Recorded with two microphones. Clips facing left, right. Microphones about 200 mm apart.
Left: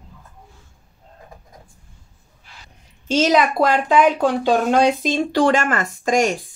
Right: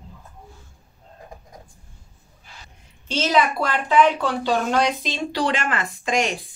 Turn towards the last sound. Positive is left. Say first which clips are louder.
# left 5 dB
turn(degrees=45)  # may be behind; listen again after turning